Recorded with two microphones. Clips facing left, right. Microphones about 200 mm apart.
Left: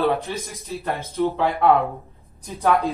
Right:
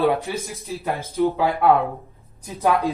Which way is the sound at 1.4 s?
Centre (ahead or behind).